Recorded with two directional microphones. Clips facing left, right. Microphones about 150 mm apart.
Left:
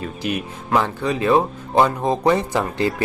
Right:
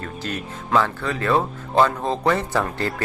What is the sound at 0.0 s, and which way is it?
Speech, 15° left (ahead or behind).